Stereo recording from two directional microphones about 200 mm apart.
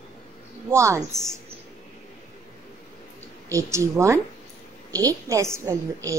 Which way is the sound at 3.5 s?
15° right (ahead or behind).